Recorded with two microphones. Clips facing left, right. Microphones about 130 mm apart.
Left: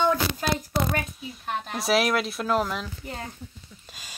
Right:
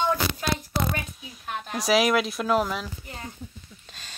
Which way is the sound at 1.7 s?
Centre (ahead or behind).